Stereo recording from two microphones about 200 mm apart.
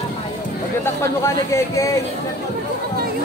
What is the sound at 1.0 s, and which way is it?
Speech, 15° left (ahead or behind).